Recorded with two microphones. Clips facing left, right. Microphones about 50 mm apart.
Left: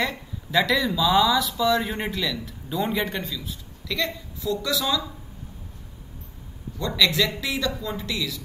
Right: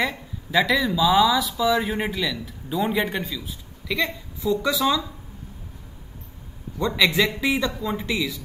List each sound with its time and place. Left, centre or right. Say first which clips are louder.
0.0 s speech: right 2 dB; centre
7.0 s speech: right 1 dB; centre